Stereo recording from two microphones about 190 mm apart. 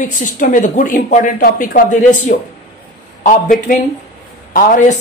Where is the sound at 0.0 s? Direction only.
45° left (ahead or behind).